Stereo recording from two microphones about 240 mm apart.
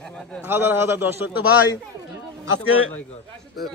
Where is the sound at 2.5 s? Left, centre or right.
Left.